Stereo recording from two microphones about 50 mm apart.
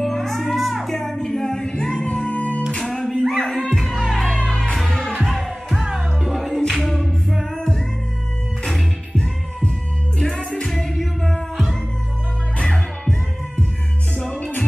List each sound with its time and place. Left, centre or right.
0.0 s music: centre; by 2.6 s left
2.8 s music: centre
3.3 s music: centre
3.9 s music: centre
4.4 s music: centre
5.1 s music: centre
5.9 s music: centre
6.7 s a capella: centre
7.5 s music: centre
9.1 s music: left
10.1 s music: centre
12.5 s music: centre
14.2 s music: centre